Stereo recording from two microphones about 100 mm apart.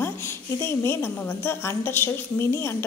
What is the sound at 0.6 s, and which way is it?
A woman's voice, 25° left (ahead or behind).